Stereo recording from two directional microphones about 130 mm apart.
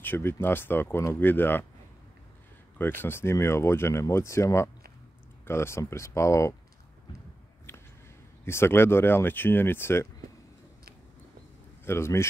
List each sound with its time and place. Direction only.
0.0 s speech: 15° left (ahead or behind)
2.8 s speech: 15° left (ahead or behind)
8.5 s speech: 20° left (ahead or behind)
11.8 s speech: 20° left (ahead or behind)